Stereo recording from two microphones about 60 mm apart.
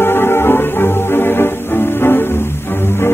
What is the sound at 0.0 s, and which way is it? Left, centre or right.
Music, left.